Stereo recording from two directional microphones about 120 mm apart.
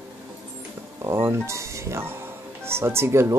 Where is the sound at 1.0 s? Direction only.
20° right (ahead or behind).